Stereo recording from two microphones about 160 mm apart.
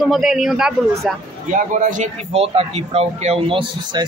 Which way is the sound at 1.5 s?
50° right (ahead or behind).